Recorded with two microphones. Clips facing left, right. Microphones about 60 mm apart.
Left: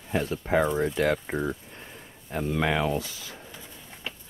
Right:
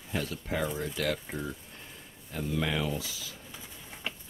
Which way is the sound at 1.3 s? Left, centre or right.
Left.